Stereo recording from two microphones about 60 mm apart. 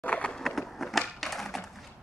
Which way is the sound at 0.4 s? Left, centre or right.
Centre.